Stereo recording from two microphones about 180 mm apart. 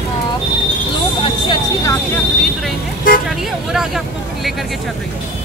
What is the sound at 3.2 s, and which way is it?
Speech, centre (ahead or behind).